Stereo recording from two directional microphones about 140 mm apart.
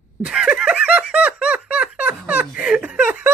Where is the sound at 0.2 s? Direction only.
5° right (ahead or behind).